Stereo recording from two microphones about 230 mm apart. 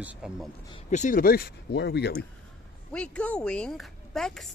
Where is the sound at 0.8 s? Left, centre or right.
Left.